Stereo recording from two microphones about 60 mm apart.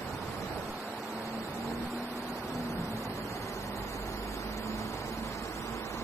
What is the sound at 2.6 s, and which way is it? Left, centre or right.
Vehicle, left.